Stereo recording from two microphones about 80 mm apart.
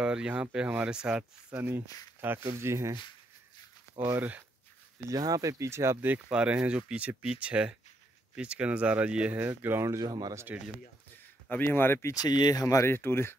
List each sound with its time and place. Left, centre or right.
0.0 s speech: centre; by 3.0 s right
4.0 s speech: right
5.0 s speech: right
6.0 s speech: right
9.4 s speech: right
9.8 s speech: right
10.5 s speech: right
11.4 s speech: left
12.1 s speech: left
12.9 s speech: left